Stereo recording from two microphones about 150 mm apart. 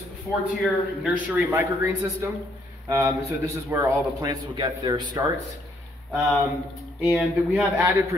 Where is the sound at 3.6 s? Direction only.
20° right (ahead or behind).